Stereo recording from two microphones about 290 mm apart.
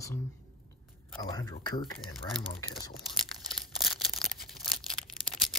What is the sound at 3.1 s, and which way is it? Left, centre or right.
Crumpling, centre.